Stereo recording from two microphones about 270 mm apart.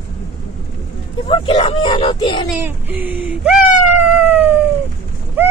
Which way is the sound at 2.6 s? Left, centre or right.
Centre.